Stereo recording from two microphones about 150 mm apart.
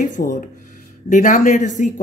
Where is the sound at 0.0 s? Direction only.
60° left (ahead or behind).